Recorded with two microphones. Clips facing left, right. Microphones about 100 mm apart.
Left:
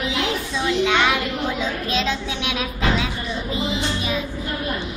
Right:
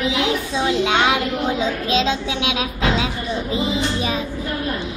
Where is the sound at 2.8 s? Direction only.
25° right (ahead or behind).